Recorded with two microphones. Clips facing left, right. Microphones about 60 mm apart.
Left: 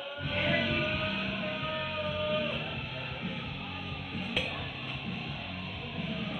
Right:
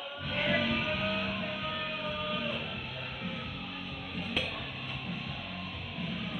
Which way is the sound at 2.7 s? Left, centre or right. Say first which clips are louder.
Left 1 dB; left.